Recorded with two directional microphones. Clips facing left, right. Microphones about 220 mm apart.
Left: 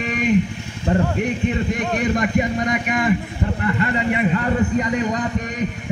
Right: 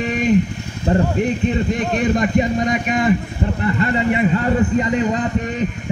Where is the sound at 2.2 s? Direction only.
25° right (ahead or behind).